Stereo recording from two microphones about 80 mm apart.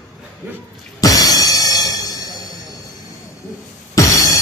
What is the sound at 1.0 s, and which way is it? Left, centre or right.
Music, left.